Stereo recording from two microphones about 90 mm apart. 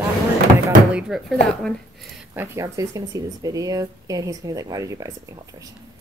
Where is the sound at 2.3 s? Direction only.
30° right (ahead or behind).